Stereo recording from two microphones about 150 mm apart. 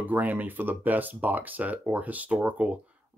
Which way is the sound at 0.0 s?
10° right (ahead or behind).